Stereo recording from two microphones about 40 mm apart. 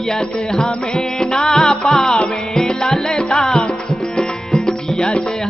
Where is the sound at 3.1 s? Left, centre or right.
Centre.